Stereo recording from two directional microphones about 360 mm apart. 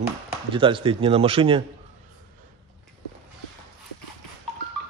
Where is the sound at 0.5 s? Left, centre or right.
Centre.